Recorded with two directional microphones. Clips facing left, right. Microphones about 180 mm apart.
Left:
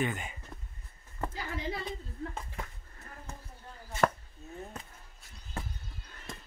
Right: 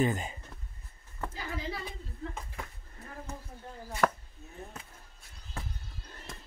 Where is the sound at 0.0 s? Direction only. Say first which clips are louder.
Right 4 dB; 35° right (ahead or behind).